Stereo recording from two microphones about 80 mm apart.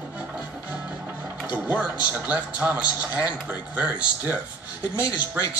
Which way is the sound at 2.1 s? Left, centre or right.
Right.